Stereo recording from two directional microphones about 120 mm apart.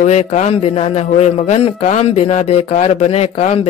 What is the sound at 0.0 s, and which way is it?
Speech, 70° left (ahead or behind).